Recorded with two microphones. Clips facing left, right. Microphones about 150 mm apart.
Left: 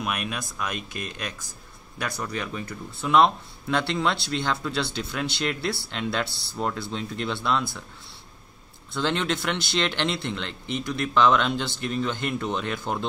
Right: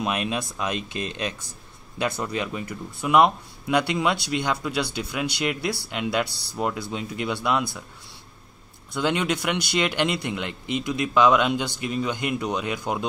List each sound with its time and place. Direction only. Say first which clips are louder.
0.0 s speech: right 4 dB; 25° right (ahead or behind)
8.9 s speech: right 2 dB; 10° right (ahead or behind)